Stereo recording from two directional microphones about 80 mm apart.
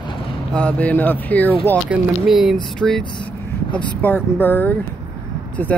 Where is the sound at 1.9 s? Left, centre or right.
Centre.